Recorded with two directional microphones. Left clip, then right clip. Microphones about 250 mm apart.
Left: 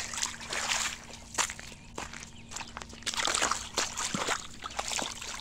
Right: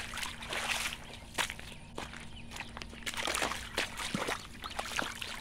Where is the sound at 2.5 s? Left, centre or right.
Centre.